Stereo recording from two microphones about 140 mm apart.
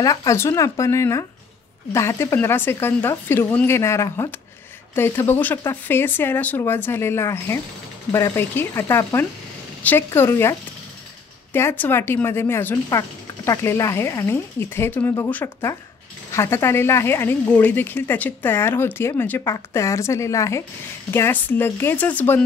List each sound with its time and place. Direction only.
0.0 s speech: 25° left (ahead or behind)
11.5 s speech: 15° left (ahead or behind)